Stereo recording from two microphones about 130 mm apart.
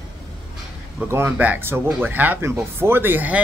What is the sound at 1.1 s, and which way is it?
Speech, 15° right (ahead or behind).